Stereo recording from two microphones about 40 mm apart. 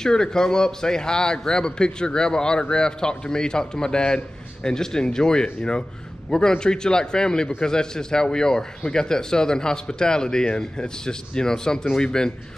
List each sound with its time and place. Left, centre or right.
0.0 s a man's voice: centre